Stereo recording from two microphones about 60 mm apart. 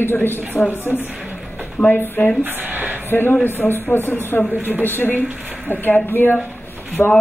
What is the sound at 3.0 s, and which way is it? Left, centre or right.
A woman's voice, left.